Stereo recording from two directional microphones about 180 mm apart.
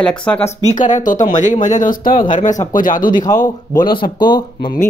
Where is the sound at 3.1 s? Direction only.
20° left (ahead or behind).